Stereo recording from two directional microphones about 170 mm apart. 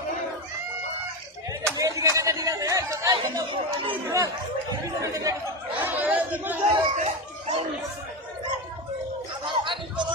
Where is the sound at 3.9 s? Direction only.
15° right (ahead or behind).